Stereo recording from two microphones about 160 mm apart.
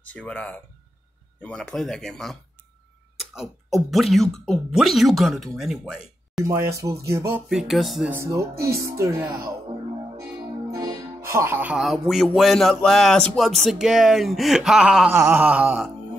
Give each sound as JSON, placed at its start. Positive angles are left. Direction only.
{"t": 0.0, "sound": "speech", "side_deg": 10}
{"t": 3.3, "sound": "speech", "side_deg": 0}
{"t": 6.4, "sound": "a sound", "side_deg": -15}
{"t": 7.4, "sound": "speech", "side_deg": 0}
{"t": 8.1, "sound": "speech", "side_deg": -15}
{"t": 10.7, "sound": "speech", "side_deg": -25}
{"t": 15.1, "sound": "a sound", "side_deg": -15}